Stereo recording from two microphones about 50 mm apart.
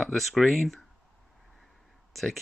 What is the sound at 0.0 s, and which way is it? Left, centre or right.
Speech, centre.